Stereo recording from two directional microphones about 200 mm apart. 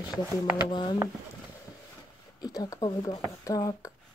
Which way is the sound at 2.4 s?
20° left (ahead or behind).